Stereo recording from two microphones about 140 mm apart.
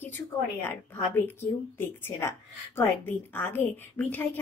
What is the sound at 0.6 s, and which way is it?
A woman's voice, 15° left (ahead or behind).